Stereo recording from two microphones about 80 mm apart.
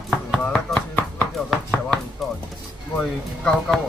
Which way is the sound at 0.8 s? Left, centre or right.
Left.